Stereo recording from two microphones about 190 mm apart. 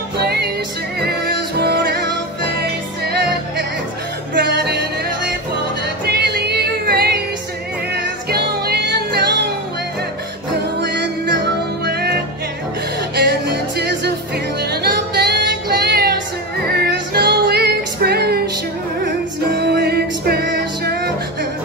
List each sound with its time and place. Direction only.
0.2 s music: 55° right (ahead or behind)
6.0 s music: 55° right (ahead or behind)
10.8 s music: 65° right (ahead or behind)